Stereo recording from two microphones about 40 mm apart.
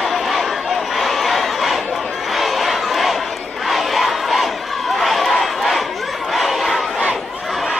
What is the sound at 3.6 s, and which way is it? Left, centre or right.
Battle cry, centre.